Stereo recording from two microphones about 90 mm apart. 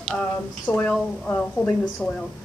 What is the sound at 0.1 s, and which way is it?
Speech, 20° left (ahead or behind).